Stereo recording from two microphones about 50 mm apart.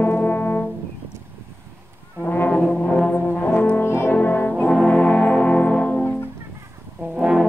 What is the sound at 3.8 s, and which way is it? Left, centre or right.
Brass instrument, left.